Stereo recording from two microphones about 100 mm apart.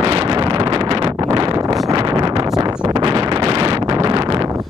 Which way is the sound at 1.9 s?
50° right (ahead or behind).